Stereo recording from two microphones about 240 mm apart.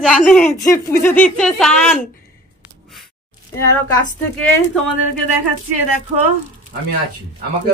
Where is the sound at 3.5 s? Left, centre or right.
Centre.